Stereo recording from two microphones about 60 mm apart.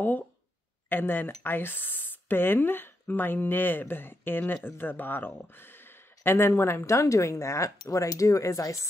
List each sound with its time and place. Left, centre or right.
0.8 s a woman's voice: left